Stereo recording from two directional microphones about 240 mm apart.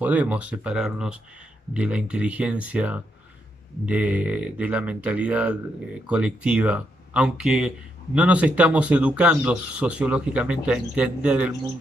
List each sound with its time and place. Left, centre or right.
0.0 s speech: centre